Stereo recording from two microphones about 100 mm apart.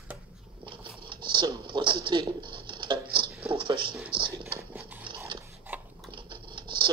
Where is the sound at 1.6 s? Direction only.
55° right (ahead or behind).